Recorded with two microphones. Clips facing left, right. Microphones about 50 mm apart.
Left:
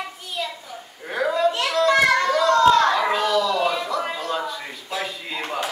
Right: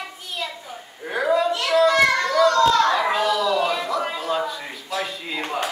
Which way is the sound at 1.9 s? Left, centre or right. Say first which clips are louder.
Left 1 dB; centre.